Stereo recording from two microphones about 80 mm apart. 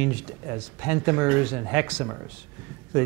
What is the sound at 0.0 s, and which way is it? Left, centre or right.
Speech, centre.